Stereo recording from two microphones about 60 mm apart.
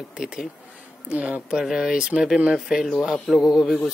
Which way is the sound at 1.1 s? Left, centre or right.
Centre.